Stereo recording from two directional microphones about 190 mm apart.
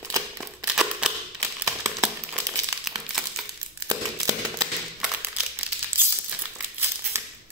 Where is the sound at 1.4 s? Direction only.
15° right (ahead or behind).